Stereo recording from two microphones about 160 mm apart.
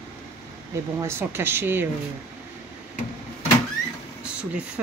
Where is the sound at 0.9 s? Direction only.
15° right (ahead or behind).